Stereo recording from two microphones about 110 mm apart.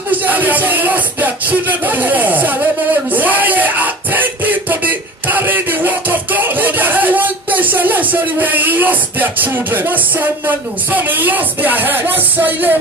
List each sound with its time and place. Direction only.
0.1 s music: 15° right (ahead or behind)
10.4 s speech: 20° right (ahead or behind)